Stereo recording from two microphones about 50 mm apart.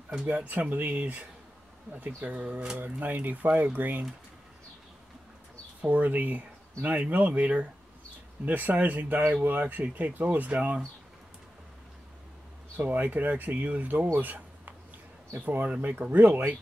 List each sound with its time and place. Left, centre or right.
0.3 s speech: right
5.8 s speech: right
12.7 s speech: right